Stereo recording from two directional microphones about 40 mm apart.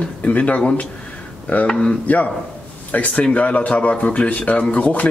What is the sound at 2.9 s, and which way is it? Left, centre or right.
Speech, left.